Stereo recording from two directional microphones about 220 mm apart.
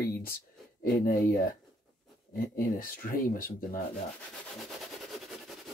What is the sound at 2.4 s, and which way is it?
Speech, 40° left (ahead or behind).